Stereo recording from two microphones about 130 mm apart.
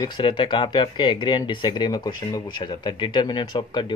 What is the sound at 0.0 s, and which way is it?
Speech, 40° left (ahead or behind).